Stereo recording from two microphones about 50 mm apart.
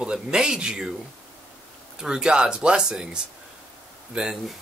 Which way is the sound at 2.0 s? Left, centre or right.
Centre.